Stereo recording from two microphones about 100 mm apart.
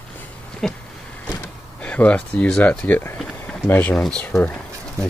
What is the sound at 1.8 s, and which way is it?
Speech, 10° left (ahead or behind).